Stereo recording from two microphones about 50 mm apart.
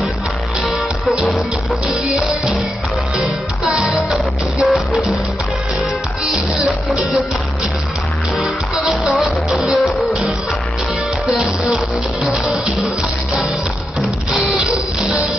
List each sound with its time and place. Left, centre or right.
3.6 s music: centre
6.2 s music: centre
9.2 s music: centre
11.7 s music: centre
14.6 s music: centre